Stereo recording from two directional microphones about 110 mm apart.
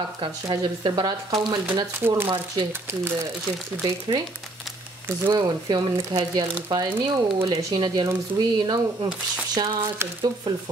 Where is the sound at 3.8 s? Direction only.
40° right (ahead or behind).